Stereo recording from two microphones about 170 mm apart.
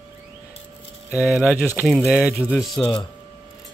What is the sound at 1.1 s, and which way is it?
Speech, 5° right (ahead or behind).